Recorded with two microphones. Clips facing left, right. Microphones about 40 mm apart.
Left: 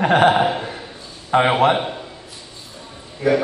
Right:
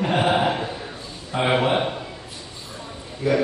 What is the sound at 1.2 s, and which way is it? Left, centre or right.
Speech, left.